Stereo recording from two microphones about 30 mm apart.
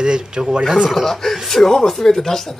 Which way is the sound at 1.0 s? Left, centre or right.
Centre.